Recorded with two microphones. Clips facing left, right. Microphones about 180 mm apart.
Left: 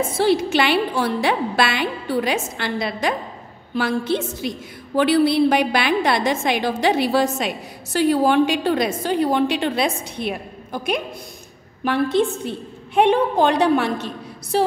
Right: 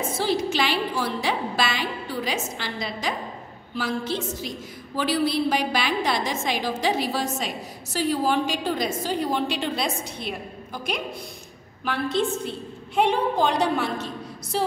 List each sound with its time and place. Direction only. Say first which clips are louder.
0.2 s a woman's voice: left 6 dB; 65° left (ahead or behind)